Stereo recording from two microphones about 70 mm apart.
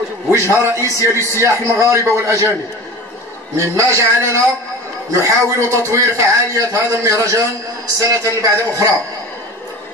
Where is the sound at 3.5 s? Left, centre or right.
Right.